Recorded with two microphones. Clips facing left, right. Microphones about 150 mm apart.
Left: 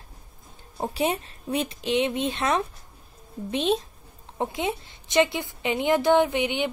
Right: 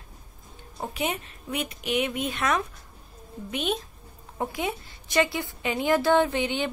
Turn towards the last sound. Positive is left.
turn(degrees=15)  # may be behind; listen again after turning